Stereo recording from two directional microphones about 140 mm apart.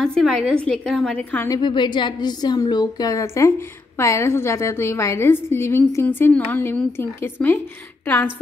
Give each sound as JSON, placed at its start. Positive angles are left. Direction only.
{"t": 0.0, "sound": "a woman's voice", "side_deg": 5}
{"t": 1.5, "sound": "a woman's voice", "side_deg": 35}